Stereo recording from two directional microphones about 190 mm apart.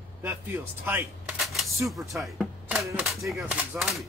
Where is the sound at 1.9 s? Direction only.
Centre (ahead or behind).